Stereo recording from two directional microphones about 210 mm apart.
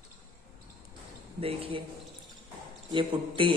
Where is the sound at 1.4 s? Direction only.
25° right (ahead or behind).